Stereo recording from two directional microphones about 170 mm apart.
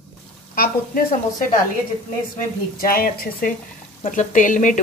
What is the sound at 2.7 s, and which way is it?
A woman's voice, 60° left (ahead or behind).